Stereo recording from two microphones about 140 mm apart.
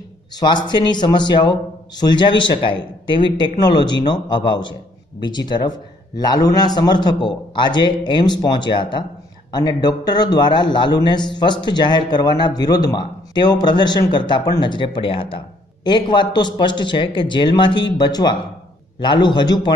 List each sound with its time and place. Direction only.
0.4 s a man's voice: 30° left (ahead or behind)